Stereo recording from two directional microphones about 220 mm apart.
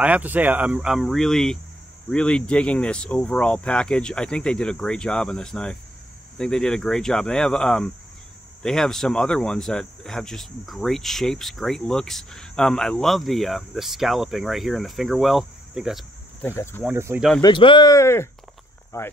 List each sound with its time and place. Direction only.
0.0 s speech: 5° right (ahead or behind); by 16.8 s 10° left (ahead or behind)
16.8 s speech: 10° right (ahead or behind)
17.4 s speech: 20° left (ahead or behind)